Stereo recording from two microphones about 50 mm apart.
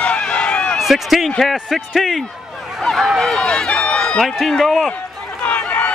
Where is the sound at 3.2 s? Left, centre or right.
Centre.